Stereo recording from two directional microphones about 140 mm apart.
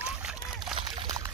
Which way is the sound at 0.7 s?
35° right (ahead or behind).